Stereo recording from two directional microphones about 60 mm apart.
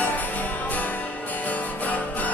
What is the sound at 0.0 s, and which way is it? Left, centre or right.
Music, left.